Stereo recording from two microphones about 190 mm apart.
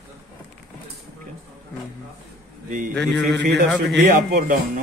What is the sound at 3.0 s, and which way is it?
A man's voice, 60° right (ahead or behind).